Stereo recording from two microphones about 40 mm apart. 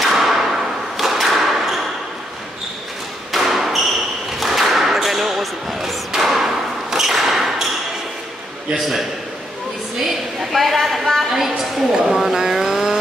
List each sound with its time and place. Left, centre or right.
0.0 s thump: centre
3.3 s thump: centre
4.4 s basketball bounce: centre
8.7 s a woman's voice: centre
9.9 s a sound: centre
11.3 s a woman's voice: centre
12.4 s vehicle: centre